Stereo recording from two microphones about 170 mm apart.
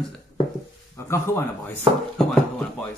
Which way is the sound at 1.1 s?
15° left (ahead or behind).